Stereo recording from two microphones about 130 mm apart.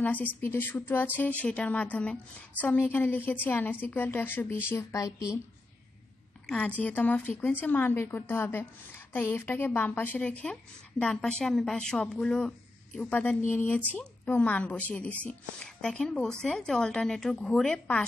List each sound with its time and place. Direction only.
0.0 s a woman's voice: 15° left (ahead or behind)
6.4 s a woman's voice: 10° left (ahead or behind)